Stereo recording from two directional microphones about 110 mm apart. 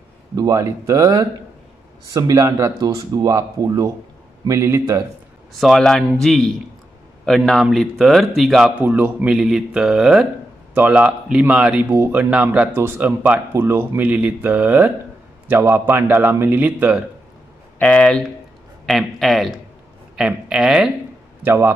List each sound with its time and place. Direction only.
0.4 s a man's voice: 25° right (ahead or behind)
5.6 s speech: centre (ahead or behind)
8.8 s speech: 15° right (ahead or behind)
11.9 s a man's voice: 25° right (ahead or behind)
12.2 s a man's voice: 10° right (ahead or behind)
17.7 s speech: 10° left (ahead or behind); by 20.9 s 5° right (ahead or behind)
21.4 s a man's voice: 20° right (ahead or behind)